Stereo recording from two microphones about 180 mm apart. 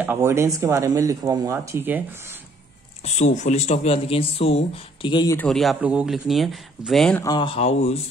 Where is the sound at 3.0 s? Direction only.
40° left (ahead or behind); by 5.4 s 25° left (ahead or behind).